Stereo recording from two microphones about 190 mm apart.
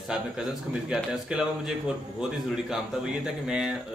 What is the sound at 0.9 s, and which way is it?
Speech, 5° right (ahead or behind).